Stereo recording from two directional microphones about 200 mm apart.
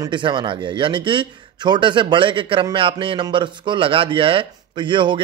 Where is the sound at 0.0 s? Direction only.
25° right (ahead or behind).